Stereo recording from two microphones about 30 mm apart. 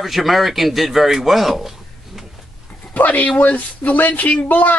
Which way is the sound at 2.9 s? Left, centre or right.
Left.